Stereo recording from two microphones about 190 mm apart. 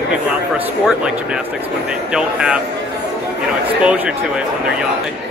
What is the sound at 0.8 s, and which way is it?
Speech, 5° right (ahead or behind).